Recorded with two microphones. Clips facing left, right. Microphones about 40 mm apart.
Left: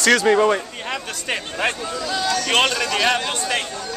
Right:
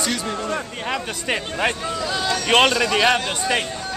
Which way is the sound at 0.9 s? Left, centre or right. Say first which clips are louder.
Right 2 dB; centre.